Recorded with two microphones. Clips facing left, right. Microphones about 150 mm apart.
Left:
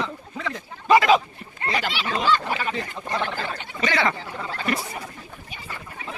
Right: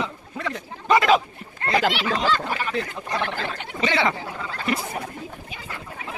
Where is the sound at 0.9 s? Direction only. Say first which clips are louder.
Left 1 dB; centre (ahead or behind).